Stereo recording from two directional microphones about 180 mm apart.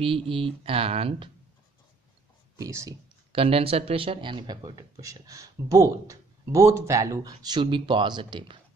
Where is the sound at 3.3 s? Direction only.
30° right (ahead or behind).